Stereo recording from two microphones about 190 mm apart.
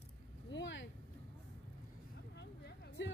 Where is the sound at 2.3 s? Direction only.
60° left (ahead or behind).